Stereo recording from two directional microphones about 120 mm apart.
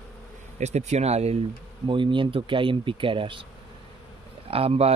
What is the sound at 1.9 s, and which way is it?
Speech, 45° right (ahead or behind).